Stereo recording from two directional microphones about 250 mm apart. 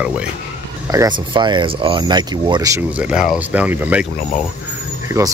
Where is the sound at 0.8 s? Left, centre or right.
Centre.